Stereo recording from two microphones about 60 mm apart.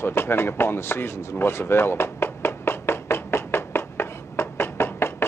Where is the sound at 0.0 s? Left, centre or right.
Left.